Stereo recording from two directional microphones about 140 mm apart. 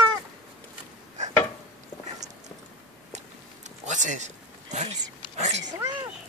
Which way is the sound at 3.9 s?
60° right (ahead or behind).